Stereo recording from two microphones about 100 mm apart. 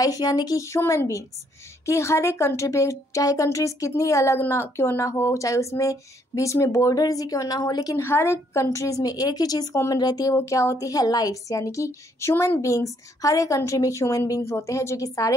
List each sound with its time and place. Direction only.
0.0 s a woman's voice: 40° left (ahead or behind)
8.0 s a woman's voice: 25° left (ahead or behind); by 10.3 s 40° left (ahead or behind)
10.3 s a woman's voice: 30° left (ahead or behind)